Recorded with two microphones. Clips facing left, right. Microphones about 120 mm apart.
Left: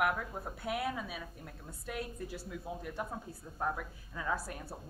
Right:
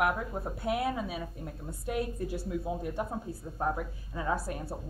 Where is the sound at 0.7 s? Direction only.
30° right (ahead or behind).